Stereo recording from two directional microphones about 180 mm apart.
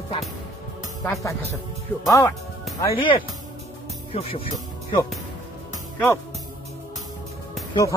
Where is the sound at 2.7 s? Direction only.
25° left (ahead or behind).